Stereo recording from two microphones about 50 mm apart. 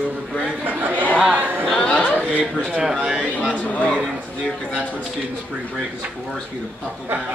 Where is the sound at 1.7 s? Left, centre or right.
Centre.